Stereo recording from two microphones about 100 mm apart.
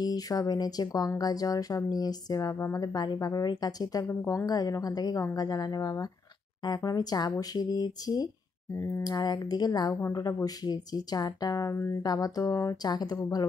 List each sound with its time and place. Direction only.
0.0 s speech: 40° left (ahead or behind)
2.5 s speech: 25° left (ahead or behind)
2.8 s speech: 40° left (ahead or behind)
4.1 s speech: 25° left (ahead or behind)
4.5 s speech: 40° left (ahead or behind)
8.7 s speech: 25° left (ahead or behind)
9.0 s speech: 40° left (ahead or behind)
12.8 s speech: 45° left (ahead or behind)